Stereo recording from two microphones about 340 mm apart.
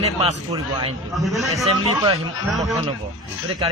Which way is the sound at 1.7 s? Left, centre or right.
Centre.